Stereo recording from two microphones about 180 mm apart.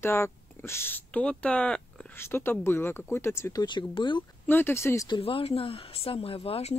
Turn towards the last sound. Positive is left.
turn(degrees=35)  # may be behind; listen again after turning